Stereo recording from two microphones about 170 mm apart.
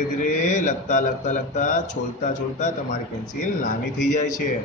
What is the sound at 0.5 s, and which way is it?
A man's voice, 45° left (ahead or behind).